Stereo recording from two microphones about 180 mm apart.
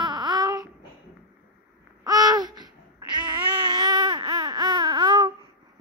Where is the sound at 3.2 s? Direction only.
25° right (ahead or behind).